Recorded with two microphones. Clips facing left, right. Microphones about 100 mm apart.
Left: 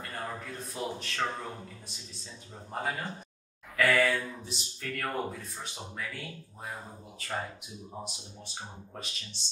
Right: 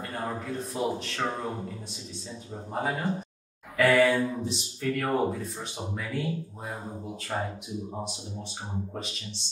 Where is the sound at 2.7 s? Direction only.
10° right (ahead or behind).